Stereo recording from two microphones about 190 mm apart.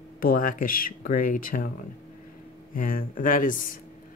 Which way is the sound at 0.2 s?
45° left (ahead or behind).